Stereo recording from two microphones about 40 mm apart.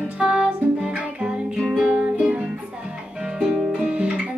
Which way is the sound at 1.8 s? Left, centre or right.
Right.